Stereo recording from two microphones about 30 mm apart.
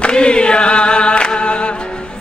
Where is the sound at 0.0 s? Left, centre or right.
Left.